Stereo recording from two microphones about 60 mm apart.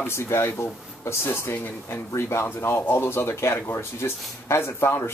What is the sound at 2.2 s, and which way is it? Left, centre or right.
Speech, left.